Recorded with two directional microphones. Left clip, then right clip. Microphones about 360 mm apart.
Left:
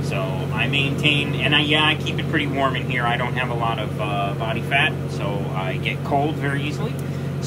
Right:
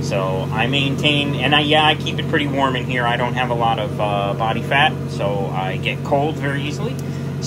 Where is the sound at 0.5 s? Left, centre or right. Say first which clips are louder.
Even; centre.